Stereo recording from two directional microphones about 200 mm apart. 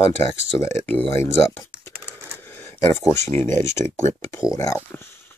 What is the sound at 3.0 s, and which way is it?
Speech, 15° left (ahead or behind).